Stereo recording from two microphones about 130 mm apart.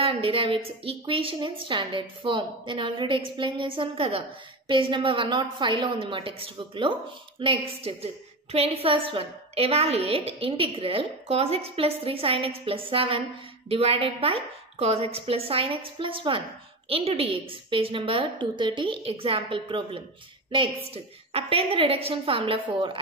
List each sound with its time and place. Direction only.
0.0 s a woman's voice: 45° right (ahead or behind)